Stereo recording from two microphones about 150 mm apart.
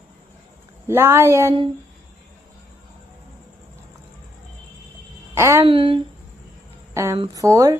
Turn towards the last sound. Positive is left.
turn(degrees=-20)  # may be behind; listen again after turning